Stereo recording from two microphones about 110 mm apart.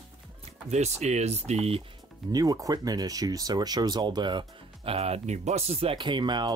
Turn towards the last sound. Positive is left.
turn(degrees=-45)  # may be behind; listen again after turning